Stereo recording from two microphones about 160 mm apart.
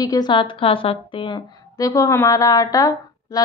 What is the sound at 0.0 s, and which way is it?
A woman's voice, 25° left (ahead or behind).